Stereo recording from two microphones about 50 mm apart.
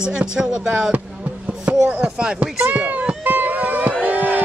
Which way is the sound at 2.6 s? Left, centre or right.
Right.